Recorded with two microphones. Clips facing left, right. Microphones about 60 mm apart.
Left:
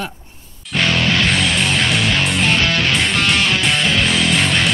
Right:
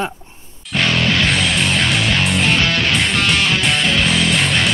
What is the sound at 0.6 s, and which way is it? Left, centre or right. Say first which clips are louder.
Music: even; centre.